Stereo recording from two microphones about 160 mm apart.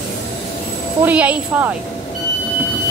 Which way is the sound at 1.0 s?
10° right (ahead or behind).